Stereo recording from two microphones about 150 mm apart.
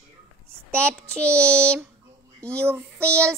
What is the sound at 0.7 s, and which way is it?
Child singing, 10° left (ahead or behind).